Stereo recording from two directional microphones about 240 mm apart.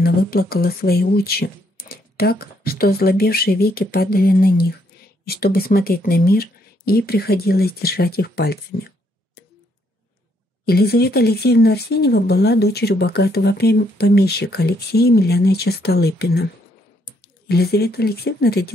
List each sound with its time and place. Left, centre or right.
0.0 s speech: left
10.6 s speech: left